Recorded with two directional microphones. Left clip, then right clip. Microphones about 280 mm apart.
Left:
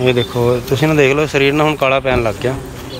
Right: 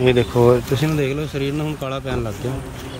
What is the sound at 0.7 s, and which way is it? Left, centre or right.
Speech, centre.